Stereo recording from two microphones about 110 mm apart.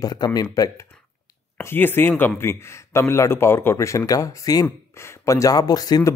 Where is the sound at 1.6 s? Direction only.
20° left (ahead or behind).